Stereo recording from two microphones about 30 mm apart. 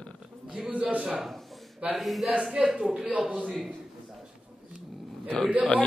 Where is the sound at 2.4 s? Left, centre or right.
Centre.